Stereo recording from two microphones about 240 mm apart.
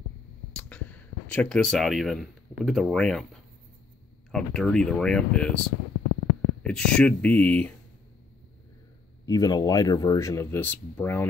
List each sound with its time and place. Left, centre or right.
0.5 s speech: centre
4.3 s speech: centre
6.6 s speech: centre
9.2 s speech: centre